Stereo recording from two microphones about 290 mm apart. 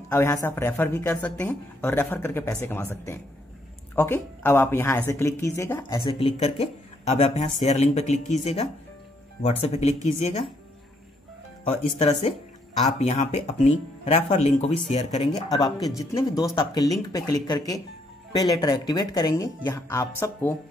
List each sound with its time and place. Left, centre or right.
0.1 s speech: centre
11.6 s speech: left